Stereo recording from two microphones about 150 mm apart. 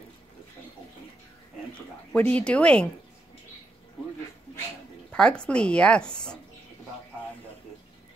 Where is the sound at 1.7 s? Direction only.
10° left (ahead or behind).